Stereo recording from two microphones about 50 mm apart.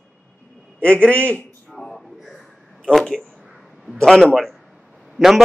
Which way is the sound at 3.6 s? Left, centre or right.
Centre.